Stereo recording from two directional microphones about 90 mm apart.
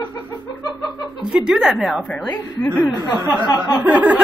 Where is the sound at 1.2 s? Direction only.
10° right (ahead or behind).